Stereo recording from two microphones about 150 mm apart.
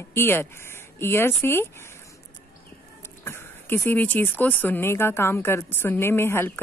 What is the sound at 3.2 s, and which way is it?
Speech, 15° left (ahead or behind).